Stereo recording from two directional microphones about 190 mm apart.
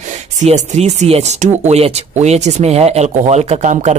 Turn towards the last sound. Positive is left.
turn(degrees=-40)  # may be behind; listen again after turning